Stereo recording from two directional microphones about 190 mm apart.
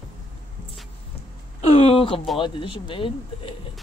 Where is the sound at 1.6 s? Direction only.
30° left (ahead or behind).